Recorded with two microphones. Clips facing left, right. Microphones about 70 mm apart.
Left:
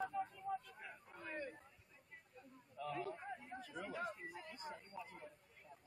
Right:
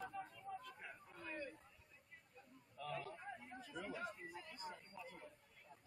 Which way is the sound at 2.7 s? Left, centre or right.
Centre.